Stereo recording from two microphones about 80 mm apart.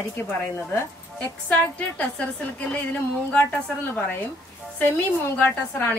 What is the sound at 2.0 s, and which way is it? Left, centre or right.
A woman's voice, centre.